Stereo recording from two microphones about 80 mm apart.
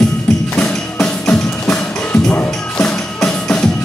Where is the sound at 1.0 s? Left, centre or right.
Left.